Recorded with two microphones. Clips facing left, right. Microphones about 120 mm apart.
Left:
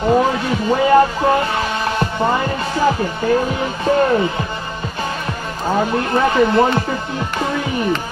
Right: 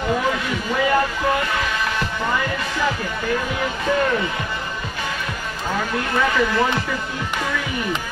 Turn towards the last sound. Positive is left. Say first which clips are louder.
# left 5 dB
turn(degrees=30)  # may be behind; listen again after turning